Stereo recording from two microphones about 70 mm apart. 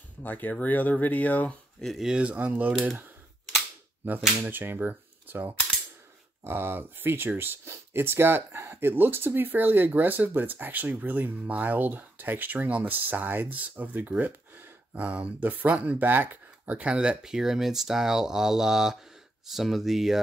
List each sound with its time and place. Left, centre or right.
0.2 s speech: left
1.8 s speech: centre
2.0 s speech: centre
4.4 s cap gun: right
6.4 s speech: right; by 20.2 s centre